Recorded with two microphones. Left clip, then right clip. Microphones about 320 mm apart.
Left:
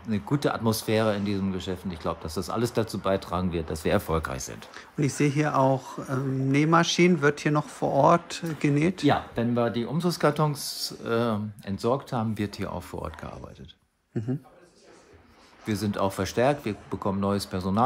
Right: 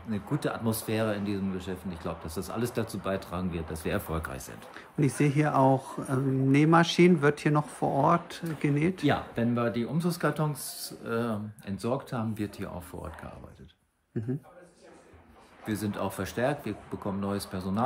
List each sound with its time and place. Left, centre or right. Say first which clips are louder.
0.1 s speech: left 5 dB; centre
4.7 s speech: left 1 dB; centre
14.2 s speech: left 3 dB; centre
15.6 s speech: left 5 dB; centre